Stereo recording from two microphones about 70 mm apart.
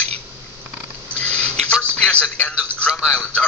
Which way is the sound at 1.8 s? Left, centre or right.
Centre.